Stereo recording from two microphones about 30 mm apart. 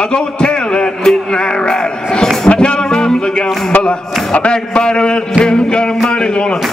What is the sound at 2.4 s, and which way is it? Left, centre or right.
Music, left.